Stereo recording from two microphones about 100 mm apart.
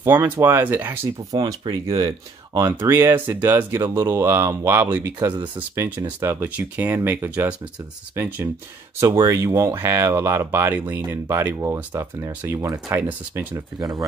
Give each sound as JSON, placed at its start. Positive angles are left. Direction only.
{"t": 0.0, "sound": "speech", "side_deg": -25}
{"t": 1.3, "sound": "speech", "side_deg": -40}
{"t": 2.8, "sound": "speech", "side_deg": -25}
{"t": 13.7, "sound": "speech", "side_deg": -40}